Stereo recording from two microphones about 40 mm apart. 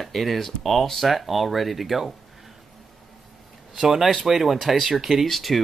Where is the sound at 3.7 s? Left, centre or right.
Centre.